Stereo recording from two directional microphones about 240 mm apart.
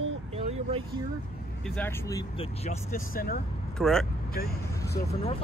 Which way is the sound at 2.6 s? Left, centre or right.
Left.